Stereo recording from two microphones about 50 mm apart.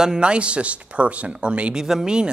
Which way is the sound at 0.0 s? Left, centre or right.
Centre.